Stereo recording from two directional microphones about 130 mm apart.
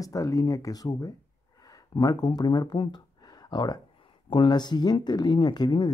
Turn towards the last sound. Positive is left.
turn(degrees=35)  # may be behind; listen again after turning